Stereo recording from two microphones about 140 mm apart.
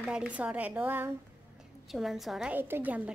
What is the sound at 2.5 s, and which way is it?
Speech, 15° right (ahead or behind).